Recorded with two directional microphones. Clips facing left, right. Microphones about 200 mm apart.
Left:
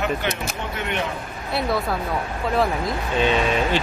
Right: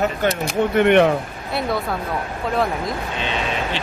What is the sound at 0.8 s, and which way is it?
Speech, 60° right (ahead or behind).